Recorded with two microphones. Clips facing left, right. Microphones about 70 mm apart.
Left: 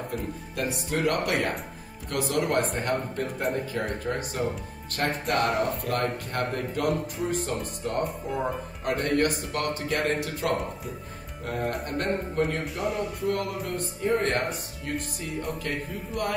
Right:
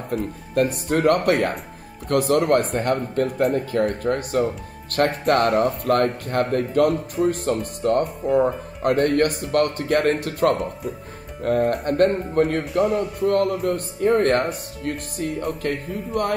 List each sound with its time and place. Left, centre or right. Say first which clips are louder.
0.1 s speech: right 9 dB; right
10.6 s speech: right 6 dB; centre
11.4 s speech: right 10 dB; right
12.8 s speech: right 6 dB; centre
13.2 s speech: right 11 dB; right